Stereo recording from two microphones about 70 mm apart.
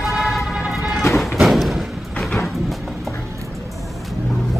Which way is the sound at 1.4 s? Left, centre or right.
Centre.